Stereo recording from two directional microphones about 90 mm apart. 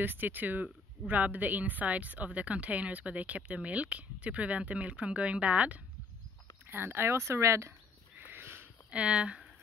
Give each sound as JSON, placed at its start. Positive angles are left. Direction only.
{"t": 0.0, "sound": "speech", "side_deg": -20}
{"t": 8.2, "sound": "a sound", "side_deg": -25}
{"t": 8.9, "sound": "speech", "side_deg": -10}